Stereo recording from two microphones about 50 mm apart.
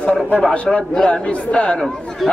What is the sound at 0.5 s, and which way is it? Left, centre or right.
A man's voice, left.